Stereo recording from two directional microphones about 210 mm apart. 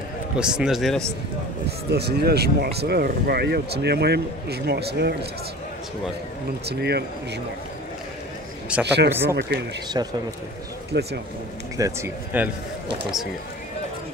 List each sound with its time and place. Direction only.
0.4 s speech: 5° right (ahead or behind)
1.9 s speech: 50° right (ahead or behind)
6.7 s speech: 50° right (ahead or behind)
8.8 s speech: 55° right (ahead or behind)
9.9 s speech: 20° right (ahead or behind)
10.9 s speech: 50° right (ahead or behind)
11.7 s speech: 15° right (ahead or behind)